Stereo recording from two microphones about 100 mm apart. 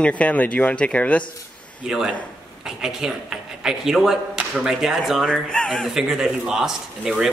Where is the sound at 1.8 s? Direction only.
5° right (ahead or behind).